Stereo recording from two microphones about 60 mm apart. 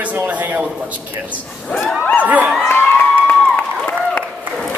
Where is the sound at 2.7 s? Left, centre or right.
Left.